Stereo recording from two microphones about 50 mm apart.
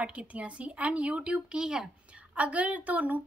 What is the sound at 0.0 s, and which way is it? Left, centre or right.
A woman's voice, right.